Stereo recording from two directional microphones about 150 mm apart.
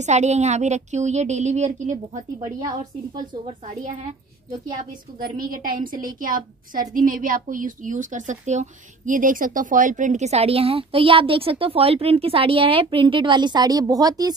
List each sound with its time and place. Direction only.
0.0 s a woman's voice: 50° right (ahead or behind)
5.2 s a woman's voice: 70° right (ahead or behind); by 14.3 s 25° right (ahead or behind)